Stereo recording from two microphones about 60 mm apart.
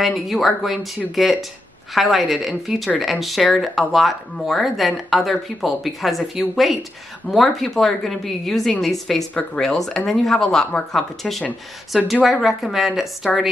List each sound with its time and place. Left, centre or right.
0.0 s speech: centre